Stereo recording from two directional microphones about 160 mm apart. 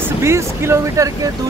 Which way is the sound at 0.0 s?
15° right (ahead or behind).